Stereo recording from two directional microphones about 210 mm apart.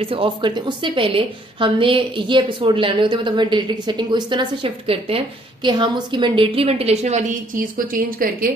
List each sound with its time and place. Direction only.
0.0 s a woman's voice: 25° right (ahead or behind); by 8.5 s 40° right (ahead or behind)